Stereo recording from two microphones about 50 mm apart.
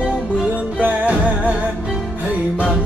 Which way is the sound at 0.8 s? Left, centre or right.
Right.